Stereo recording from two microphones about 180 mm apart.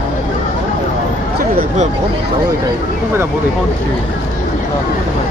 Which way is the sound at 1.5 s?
55° right (ahead or behind).